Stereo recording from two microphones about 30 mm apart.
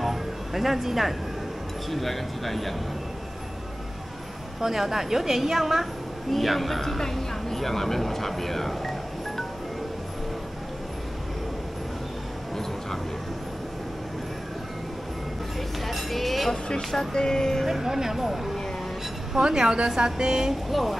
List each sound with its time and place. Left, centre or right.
0.0 s music: centre
1.9 s speech: centre
4.6 s a woman's voice: centre
6.3 s speech: centre
15.9 s speech: centre
17.1 s a sound: left
17.6 s a woman's voice: centre
19.3 s speech: right
20.7 s speech: centre